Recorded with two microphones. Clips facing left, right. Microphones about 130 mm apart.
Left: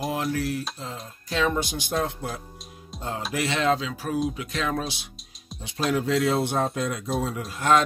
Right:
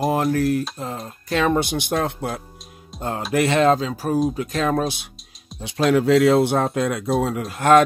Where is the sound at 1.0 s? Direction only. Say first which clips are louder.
Right 4 dB; 60° right (ahead or behind).